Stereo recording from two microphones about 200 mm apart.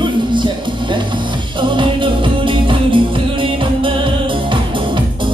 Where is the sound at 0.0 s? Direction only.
25° right (ahead or behind).